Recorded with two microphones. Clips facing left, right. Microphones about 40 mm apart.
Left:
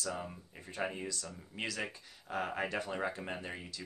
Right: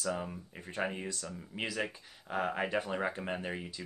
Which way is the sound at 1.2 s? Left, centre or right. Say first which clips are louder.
Right 2 dB; centre.